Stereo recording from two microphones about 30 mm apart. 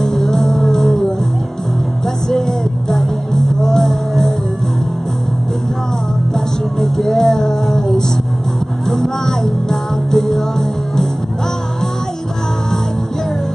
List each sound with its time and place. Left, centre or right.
0.0 s music: centre
2.2 s vehicle: centre
3.6 s music: centre
6.3 s music: centre
8.8 s music: centre